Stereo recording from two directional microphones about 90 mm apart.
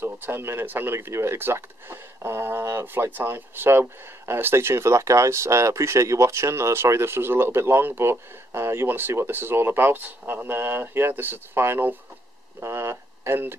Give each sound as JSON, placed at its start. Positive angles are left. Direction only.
{"t": 0.0, "sound": "speech", "side_deg": -25}